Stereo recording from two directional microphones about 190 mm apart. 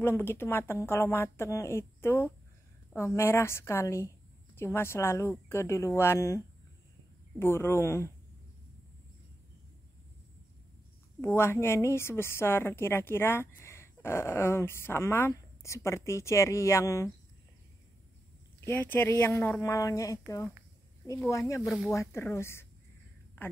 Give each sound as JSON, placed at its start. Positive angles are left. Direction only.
{"t": 0.0, "sound": "a woman's voice", "side_deg": 10}
{"t": 11.1, "sound": "a woman's voice", "side_deg": 10}
{"t": 18.7, "sound": "a woman's voice", "side_deg": 10}